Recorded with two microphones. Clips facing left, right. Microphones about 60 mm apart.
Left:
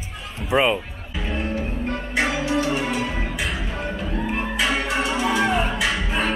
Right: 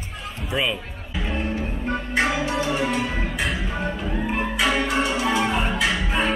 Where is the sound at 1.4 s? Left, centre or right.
Centre.